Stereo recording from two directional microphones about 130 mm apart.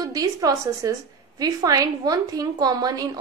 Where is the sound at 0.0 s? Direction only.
30° right (ahead or behind).